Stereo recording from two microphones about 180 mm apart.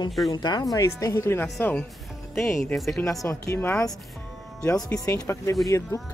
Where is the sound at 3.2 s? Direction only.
15° left (ahead or behind).